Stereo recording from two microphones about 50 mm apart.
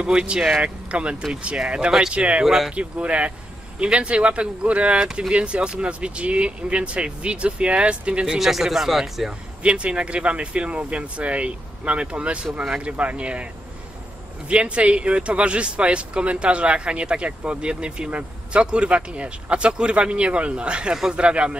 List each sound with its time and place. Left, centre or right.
0.0 s speech: centre
1.9 s speech: centre
2.1 s speech: right
2.4 s speech: centre
2.7 s speech: right
8.3 s speech: centre
9.6 s speech: right
14.5 s speech: right